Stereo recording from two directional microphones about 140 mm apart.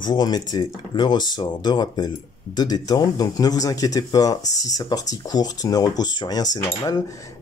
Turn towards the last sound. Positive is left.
turn(degrees=25)  # may be behind; listen again after turning